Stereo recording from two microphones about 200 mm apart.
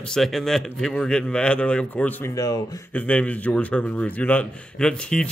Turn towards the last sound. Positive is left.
turn(degrees=5)  # may be behind; listen again after turning